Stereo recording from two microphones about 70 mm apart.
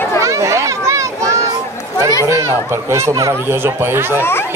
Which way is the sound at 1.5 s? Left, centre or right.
Right.